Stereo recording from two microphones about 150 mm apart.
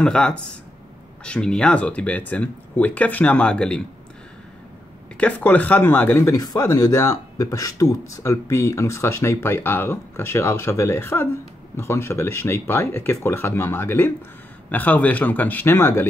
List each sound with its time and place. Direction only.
0.0 s speech: 5° left (ahead or behind)
5.1 s speech: 10° left (ahead or behind)